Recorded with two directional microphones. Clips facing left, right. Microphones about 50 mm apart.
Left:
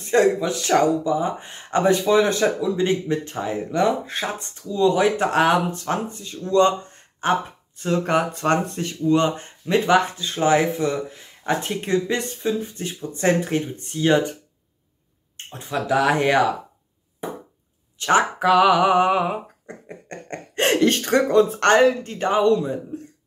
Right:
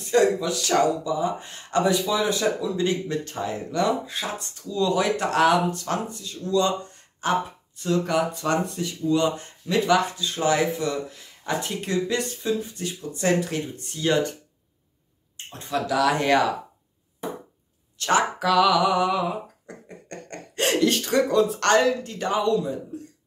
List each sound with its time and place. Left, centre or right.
0.0 s speech: left
2.6 s speech: left
4.0 s speech: left
4.6 s speech: left
15.9 s speech: left
17.9 s speech: left
19.6 s speech: left